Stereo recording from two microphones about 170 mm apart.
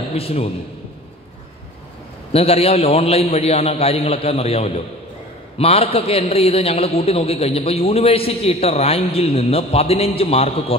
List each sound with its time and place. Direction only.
0.1 s a man's voice: 35° left (ahead or behind)
2.3 s a man's voice: 35° left (ahead or behind)